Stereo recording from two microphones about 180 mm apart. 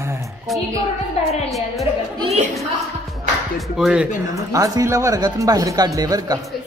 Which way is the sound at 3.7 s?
5° right (ahead or behind).